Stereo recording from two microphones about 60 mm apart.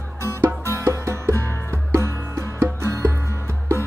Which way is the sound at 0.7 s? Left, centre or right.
Right.